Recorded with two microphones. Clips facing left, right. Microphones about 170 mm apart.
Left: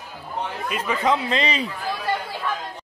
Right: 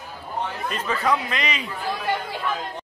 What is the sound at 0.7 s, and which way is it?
Speech, 15° left (ahead or behind).